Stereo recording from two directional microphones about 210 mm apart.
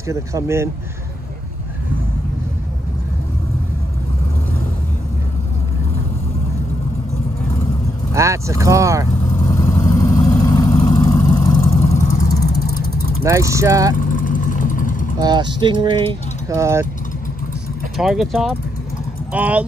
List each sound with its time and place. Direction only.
0.1 s speech: 15° right (ahead or behind)
8.1 s speech: 15° right (ahead or behind)
9.3 s vehicle: 15° left (ahead or behind); by 12.3 s 35° left (ahead or behind)
13.2 s speech: 15° right (ahead or behind)
13.9 s vehicle: 40° left (ahead or behind)
15.1 s speech: 20° right (ahead or behind)
16.5 s speech: 15° right (ahead or behind)
17.9 s speech: centre (ahead or behind)